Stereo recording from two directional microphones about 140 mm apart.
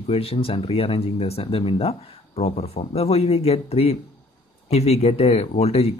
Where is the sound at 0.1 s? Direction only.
45° left (ahead or behind).